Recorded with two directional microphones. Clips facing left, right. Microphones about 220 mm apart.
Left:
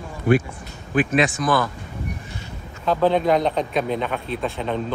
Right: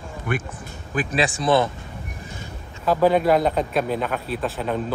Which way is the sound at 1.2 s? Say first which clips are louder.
Right 4 dB; 30° right (ahead or behind).